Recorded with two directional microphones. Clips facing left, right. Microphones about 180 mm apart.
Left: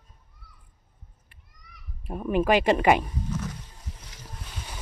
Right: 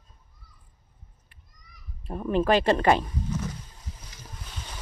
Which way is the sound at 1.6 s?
70° left (ahead or behind).